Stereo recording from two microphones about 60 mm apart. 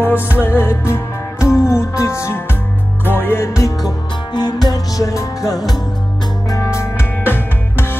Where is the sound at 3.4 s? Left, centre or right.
Left.